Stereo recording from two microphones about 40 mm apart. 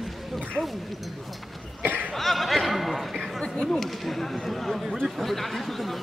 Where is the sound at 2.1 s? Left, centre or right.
Centre.